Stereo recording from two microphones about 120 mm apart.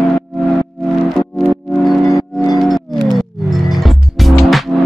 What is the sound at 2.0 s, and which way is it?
Music, 30° left (ahead or behind).